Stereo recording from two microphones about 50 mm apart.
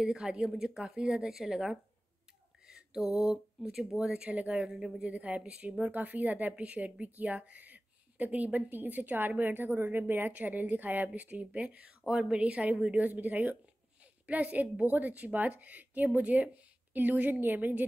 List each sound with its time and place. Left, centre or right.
0.0 s speech: centre
4.1 s a woman's voice: right
4.6 s speech: centre
5.1 s a woman's voice: right
12.1 s a woman's voice: centre; by 17.8 s right